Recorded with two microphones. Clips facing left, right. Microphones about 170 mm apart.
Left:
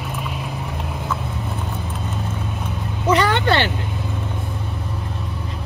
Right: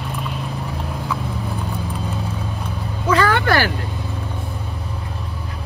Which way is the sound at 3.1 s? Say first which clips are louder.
Even; 20° left (ahead or behind).